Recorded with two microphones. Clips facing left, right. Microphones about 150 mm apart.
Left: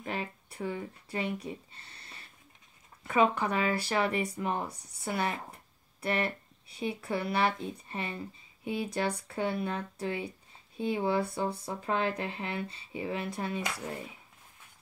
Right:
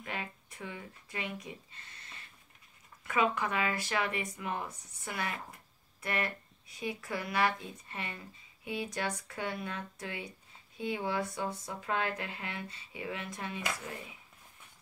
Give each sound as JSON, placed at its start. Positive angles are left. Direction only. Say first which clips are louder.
{"t": 0.0, "sound": "speech", "louder": "left 5 dB", "side_deg": 35}